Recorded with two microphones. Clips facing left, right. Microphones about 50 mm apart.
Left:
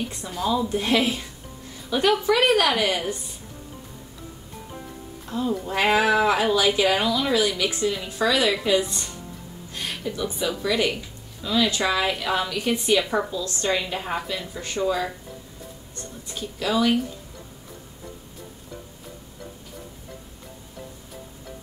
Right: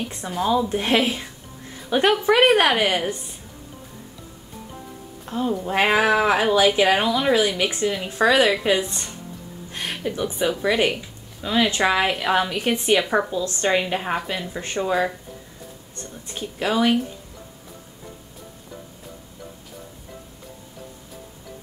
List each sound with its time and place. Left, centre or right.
0.4 s a woman's voice: right
5.3 s a woman's voice: right
16.3 s a woman's voice: right